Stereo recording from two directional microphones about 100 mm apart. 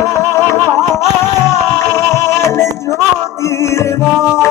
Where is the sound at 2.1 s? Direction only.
25° left (ahead or behind).